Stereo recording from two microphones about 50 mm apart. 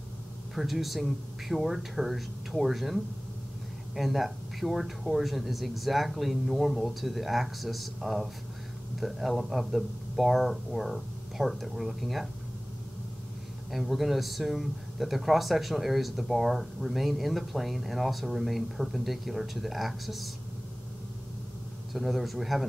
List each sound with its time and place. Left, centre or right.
0.6 s speech: centre
13.7 s speech: centre
21.9 s speech: centre